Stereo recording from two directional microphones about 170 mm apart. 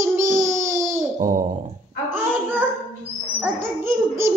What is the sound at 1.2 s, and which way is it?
Speech, 50° right (ahead or behind).